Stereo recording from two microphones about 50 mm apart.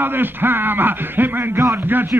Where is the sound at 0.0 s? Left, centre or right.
Right.